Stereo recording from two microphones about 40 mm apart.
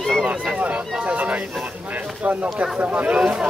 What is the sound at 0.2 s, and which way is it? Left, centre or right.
Speech, right.